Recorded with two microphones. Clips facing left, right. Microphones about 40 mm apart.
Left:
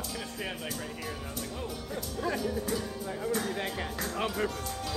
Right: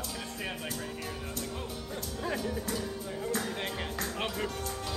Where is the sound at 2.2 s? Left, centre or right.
Centre.